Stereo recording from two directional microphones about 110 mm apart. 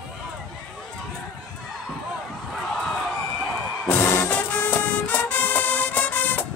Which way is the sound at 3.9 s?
25° left (ahead or behind).